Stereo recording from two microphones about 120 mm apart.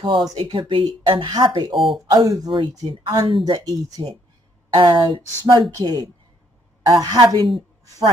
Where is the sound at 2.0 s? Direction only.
35° right (ahead or behind).